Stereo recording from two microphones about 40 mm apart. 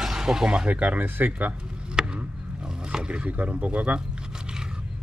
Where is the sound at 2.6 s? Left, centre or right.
Right.